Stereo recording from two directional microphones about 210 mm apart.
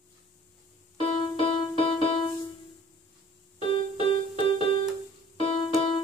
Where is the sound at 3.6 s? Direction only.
25° left (ahead or behind).